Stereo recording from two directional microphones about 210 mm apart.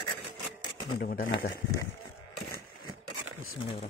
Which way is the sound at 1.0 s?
45° left (ahead or behind).